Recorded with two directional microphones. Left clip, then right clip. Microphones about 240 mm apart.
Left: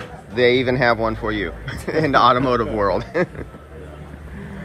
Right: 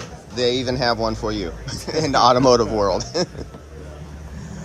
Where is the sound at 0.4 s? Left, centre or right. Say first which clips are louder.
Left 4 dB; centre.